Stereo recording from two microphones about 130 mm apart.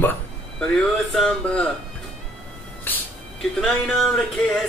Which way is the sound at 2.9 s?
15° left (ahead or behind).